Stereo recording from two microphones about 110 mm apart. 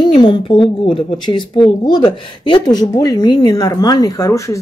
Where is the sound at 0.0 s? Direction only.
40° left (ahead or behind).